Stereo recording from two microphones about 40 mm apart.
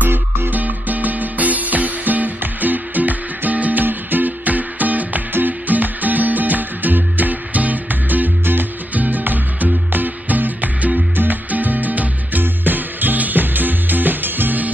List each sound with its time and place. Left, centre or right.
0.0 s music: right
0.6 s music: right